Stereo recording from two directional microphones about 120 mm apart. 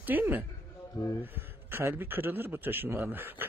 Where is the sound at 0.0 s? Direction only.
15° right (ahead or behind).